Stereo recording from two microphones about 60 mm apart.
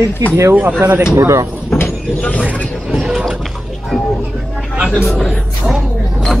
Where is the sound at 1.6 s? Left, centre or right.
Left.